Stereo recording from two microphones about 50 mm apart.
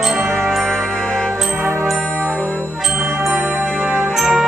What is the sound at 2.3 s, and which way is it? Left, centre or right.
Brass instrument, centre.